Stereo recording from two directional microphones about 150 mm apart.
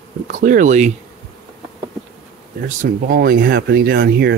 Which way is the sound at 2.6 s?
70° right (ahead or behind).